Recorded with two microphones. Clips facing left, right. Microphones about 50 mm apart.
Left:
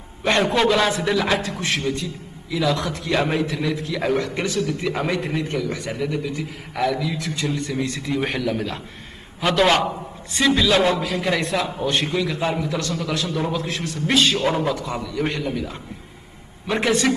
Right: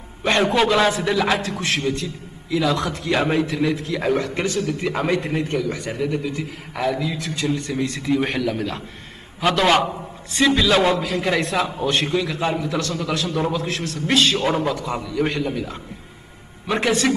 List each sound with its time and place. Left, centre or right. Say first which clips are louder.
0.2 s a man's voice: right 1 dB; centre